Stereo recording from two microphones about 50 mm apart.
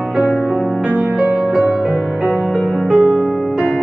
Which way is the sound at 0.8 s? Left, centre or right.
Right.